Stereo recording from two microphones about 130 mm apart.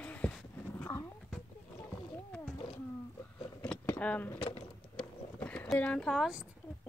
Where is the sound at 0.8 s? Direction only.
20° left (ahead or behind).